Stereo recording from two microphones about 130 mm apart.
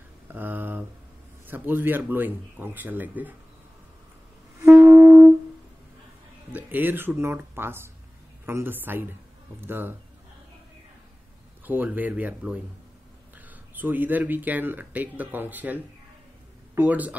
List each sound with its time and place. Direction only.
0.3 s a sound: 15° right (ahead or behind)
1.5 s speech: 15° right (ahead or behind)
4.6 s music: 20° right (ahead or behind)
6.5 s speech: 15° right (ahead or behind)
11.6 s speech: 15° right (ahead or behind)